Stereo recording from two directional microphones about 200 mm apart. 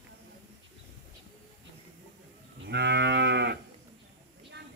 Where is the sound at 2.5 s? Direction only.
60° right (ahead or behind).